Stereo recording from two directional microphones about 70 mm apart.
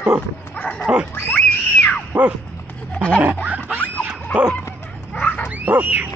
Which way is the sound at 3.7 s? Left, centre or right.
Left.